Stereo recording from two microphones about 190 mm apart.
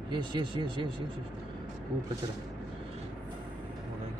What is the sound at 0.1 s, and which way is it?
Speech, 25° right (ahead or behind).